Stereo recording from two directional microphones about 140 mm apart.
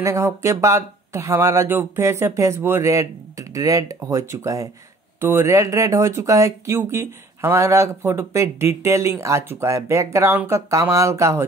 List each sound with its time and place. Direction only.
0.0 s speech: 20° right (ahead or behind)